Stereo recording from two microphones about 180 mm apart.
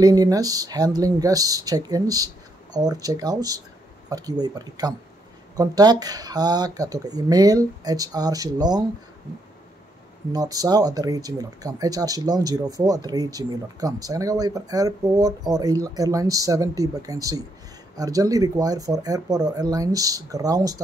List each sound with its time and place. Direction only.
0.0 s speech: 20° right (ahead or behind)
10.3 s speech: 20° right (ahead or behind)